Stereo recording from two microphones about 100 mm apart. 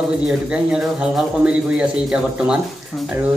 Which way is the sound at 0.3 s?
10° right (ahead or behind).